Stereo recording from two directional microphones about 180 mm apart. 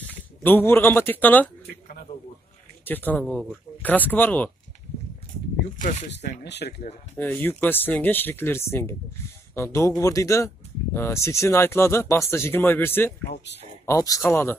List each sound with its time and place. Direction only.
0.4 s speech: 10° left (ahead or behind)
2.8 s speech: 10° left (ahead or behind)
5.8 s speech: 40° left (ahead or behind)
6.4 s speech: 70° left (ahead or behind)
7.2 s speech: 10° left (ahead or behind)